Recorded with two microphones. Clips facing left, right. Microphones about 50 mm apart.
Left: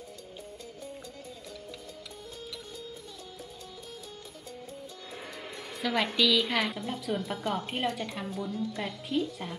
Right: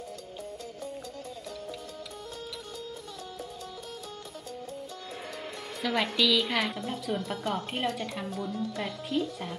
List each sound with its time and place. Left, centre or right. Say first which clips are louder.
5.4 s a woman's voice: even; centre
8.3 s a woman's voice: even; right
8.7 s a woman's voice: right 1 dB; centre